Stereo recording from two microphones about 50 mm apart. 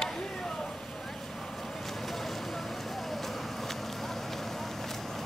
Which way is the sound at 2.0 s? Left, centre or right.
Centre.